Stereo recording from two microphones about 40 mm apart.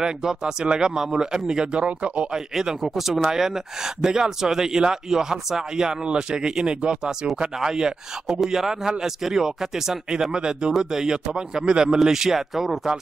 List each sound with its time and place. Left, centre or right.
0.0 s a man's voice: centre
2.3 s a man's voice: centre